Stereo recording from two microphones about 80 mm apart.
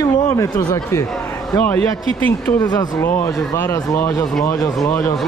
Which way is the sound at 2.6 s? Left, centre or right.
Left.